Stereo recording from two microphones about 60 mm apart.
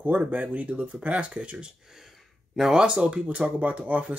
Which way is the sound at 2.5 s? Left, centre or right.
Centre.